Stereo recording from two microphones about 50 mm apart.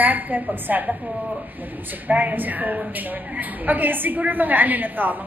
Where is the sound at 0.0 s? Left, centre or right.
Right.